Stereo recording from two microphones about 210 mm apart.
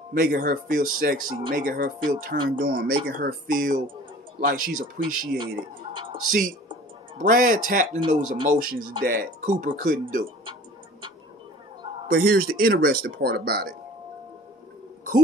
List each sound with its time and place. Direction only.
0.1 s speech: 45° right (ahead or behind)
5.8 s a woman's voice: 25° right (ahead or behind)
6.1 s speech: 40° right (ahead or behind)
12.1 s speech: 45° right (ahead or behind)